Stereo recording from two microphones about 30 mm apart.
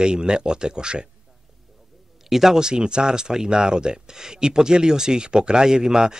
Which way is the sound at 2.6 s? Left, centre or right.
Right.